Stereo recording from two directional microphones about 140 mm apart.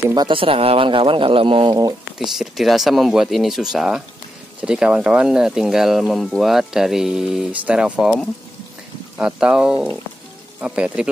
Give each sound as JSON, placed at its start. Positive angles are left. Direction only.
{"t": 0.1, "sound": "speech", "side_deg": -35}
{"t": 2.1, "sound": "speech", "side_deg": 0}